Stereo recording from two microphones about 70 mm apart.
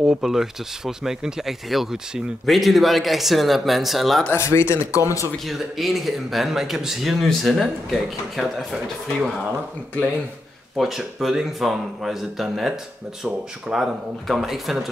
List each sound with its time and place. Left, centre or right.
0.0 s speech: centre
4.3 s speech: left
5.4 s speech: centre
10.8 s speech: centre